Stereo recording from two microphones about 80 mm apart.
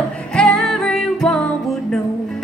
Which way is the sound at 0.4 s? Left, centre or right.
Centre.